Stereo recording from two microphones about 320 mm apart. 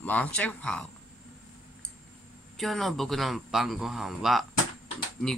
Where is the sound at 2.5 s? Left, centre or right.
Centre.